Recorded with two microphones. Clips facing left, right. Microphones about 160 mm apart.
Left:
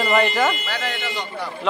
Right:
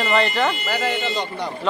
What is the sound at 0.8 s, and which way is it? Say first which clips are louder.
Speech: right 5 dB; 10° right (ahead or behind).